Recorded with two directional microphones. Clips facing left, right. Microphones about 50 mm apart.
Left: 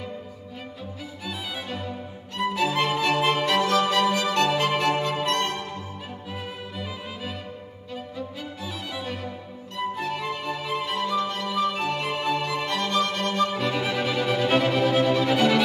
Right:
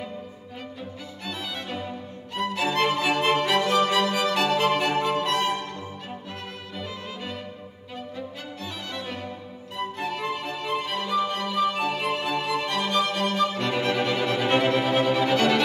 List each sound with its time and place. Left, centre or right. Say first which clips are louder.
1.2 s music: even; centre
2.3 s music: left 1 dB; centre
14.8 s music: left 2 dB; centre
15.0 s music: even; centre